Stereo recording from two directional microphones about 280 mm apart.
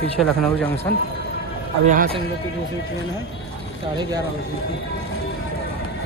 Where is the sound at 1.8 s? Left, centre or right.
Right.